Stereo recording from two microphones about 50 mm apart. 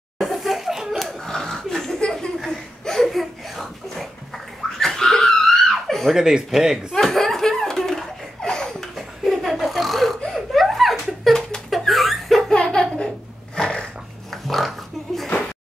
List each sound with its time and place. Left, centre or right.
0.2 s laughter: centre
2.8 s a sound: centre
6.1 s speech: centre
6.9 s laughter: centre
8.9 s laughter: centre
12.5 s a sound: centre
13.6 s dog: centre
14.3 s pig: centre